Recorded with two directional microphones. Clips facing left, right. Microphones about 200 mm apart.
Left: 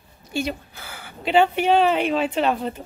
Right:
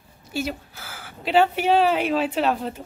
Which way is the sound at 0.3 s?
5° right (ahead or behind).